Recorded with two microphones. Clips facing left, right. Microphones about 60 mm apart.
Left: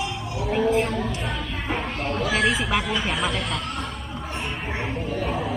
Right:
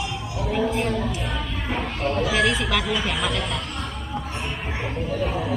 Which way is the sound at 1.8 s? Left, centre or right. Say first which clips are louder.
Right 5 dB; left.